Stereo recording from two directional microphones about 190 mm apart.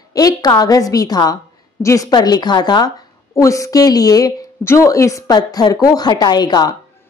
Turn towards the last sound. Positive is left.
turn(degrees=20)  # may be behind; listen again after turning